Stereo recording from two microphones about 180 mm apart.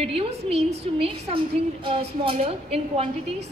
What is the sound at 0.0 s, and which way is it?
A woman's voice, 35° right (ahead or behind).